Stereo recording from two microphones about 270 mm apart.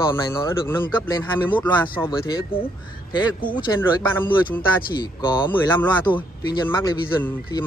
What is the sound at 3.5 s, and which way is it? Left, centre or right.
Speech, centre.